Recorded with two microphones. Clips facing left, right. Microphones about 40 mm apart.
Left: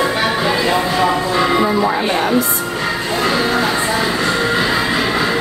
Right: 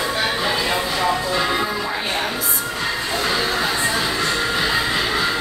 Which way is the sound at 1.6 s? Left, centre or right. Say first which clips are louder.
Left 8 dB; left.